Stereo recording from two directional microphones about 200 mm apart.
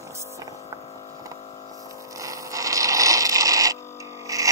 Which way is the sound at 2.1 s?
15° right (ahead or behind).